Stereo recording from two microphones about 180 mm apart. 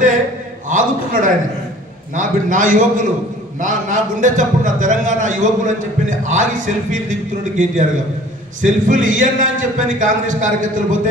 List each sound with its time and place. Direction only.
0.7 s a man's voice: 45° right (ahead or behind)